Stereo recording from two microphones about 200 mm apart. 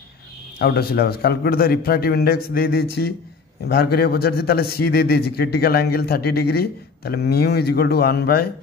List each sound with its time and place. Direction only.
0.6 s a man's voice: 50° left (ahead or behind)